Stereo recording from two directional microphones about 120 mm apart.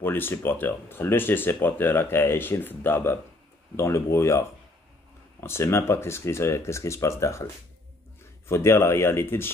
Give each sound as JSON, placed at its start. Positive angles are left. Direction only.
{"t": 0.0, "sound": "speech", "side_deg": 15}
{"t": 5.4, "sound": "speech", "side_deg": 20}
{"t": 8.5, "sound": "speech", "side_deg": 20}